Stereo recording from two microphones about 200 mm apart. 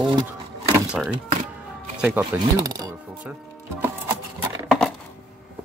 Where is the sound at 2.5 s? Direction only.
20° right (ahead or behind).